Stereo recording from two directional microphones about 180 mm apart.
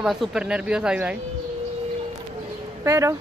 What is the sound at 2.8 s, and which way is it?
Speech, 15° right (ahead or behind).